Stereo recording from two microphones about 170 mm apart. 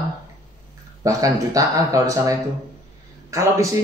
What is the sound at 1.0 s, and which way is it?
Speech, 20° right (ahead or behind).